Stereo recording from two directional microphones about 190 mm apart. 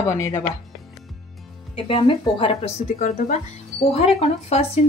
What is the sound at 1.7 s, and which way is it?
Speech, 30° left (ahead or behind).